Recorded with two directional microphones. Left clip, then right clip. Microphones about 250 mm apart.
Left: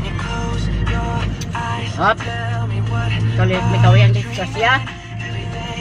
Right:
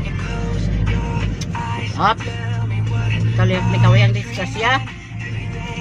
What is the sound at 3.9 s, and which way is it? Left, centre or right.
Speech, centre.